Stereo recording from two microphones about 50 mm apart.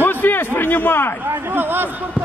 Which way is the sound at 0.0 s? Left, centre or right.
Left.